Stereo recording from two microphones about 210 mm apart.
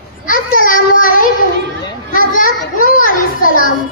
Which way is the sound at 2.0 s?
40° left (ahead or behind).